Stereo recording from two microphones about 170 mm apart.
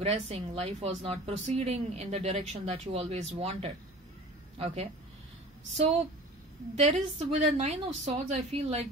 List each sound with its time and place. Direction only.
0.0 s a woman's voice: 35° right (ahead or behind)
6.7 s a woman's voice: 40° right (ahead or behind)